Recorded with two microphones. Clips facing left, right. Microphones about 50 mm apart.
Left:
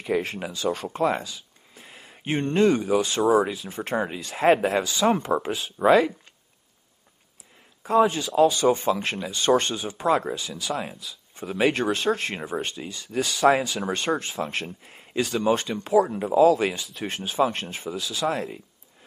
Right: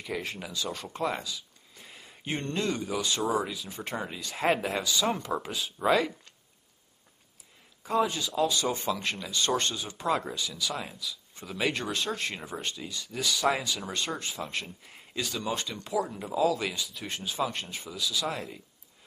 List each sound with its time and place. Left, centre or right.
0.0 s speech: left
0.9 s speech: left
1.8 s a sound: centre
2.2 s speech: left
8.4 s speech: left
11.0 s speech: left
18.3 s speech: left